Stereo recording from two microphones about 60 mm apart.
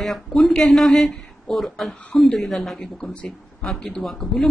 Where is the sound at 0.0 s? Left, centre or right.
Centre.